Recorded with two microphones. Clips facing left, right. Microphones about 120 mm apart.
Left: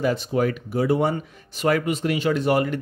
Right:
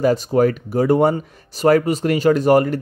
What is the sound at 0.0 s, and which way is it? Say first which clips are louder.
Speech: right 6 dB; 40° right (ahead or behind).